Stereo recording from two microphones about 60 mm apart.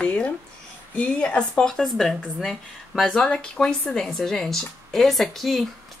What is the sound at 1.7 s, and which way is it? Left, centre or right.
Speech, centre.